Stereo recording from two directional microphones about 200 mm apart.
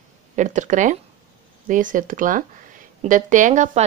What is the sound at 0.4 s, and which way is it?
Speech, 40° right (ahead or behind).